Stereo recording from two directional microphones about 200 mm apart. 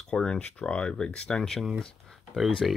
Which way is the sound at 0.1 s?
5° left (ahead or behind).